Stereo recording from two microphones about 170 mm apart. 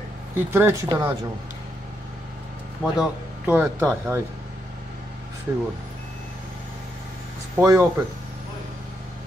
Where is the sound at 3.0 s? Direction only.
5° right (ahead or behind).